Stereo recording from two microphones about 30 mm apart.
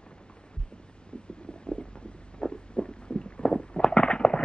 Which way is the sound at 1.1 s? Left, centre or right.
Left.